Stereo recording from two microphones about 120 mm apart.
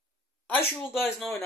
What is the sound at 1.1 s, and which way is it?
Speech, centre (ahead or behind).